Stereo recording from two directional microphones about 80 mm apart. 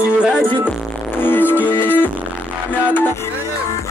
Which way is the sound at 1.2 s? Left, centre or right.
Left.